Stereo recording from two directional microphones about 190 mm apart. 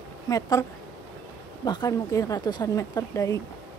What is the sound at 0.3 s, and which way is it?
Speech, 20° left (ahead or behind).